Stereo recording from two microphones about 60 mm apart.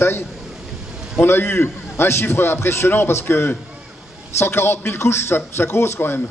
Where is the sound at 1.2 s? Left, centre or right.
Left.